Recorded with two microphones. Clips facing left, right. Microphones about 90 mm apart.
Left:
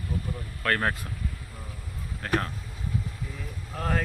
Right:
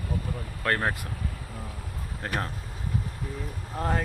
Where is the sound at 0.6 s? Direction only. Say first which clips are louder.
Even; 20° right (ahead or behind).